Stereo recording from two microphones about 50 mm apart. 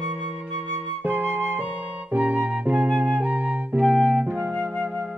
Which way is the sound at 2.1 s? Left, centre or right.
Right.